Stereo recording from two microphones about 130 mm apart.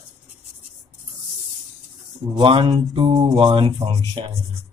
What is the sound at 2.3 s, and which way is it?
Mantra, 40° right (ahead or behind).